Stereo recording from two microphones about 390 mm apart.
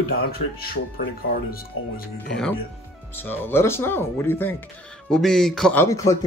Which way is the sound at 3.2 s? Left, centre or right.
Centre.